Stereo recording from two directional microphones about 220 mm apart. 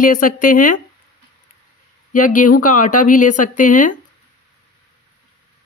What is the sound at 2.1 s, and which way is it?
Speech, 35° left (ahead or behind).